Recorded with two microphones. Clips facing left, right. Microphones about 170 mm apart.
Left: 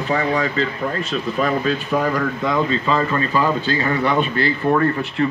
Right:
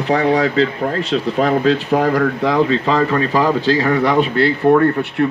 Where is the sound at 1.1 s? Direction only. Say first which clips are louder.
Right 5 dB; 85° right.